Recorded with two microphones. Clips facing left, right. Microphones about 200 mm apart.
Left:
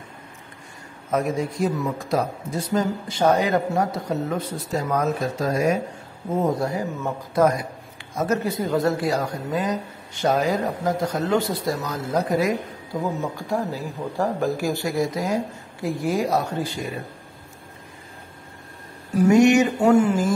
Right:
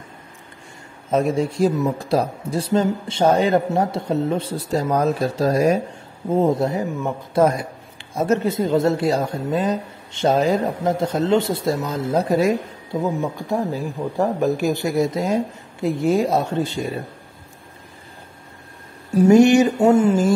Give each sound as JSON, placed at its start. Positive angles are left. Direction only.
{"t": 1.1, "sound": "speech", "side_deg": -30}
{"t": 19.2, "sound": "speech", "side_deg": -30}